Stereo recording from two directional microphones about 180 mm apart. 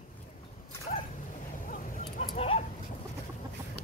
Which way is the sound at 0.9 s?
45° left (ahead or behind).